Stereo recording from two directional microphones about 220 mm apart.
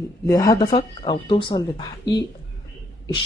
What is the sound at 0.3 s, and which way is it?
Speech, 15° left (ahead or behind).